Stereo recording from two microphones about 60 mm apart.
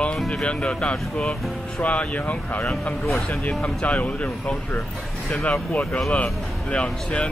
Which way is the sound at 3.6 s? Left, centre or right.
Centre.